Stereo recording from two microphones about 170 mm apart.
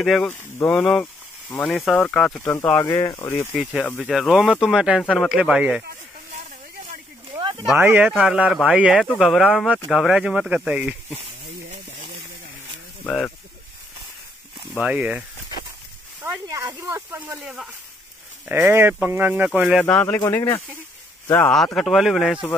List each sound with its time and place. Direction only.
0.0 s speech: centre (ahead or behind)
0.3 s speech: 15° left (ahead or behind)
3.5 s speech: centre (ahead or behind)
7.3 s a sound: 30° right (ahead or behind)
7.7 s speech: 10° right (ahead or behind)
13.0 s speech: 5° left (ahead or behind)
14.8 s speech: 5° right (ahead or behind)
16.4 s speech: 20° right (ahead or behind); by 22.6 s centre (ahead or behind)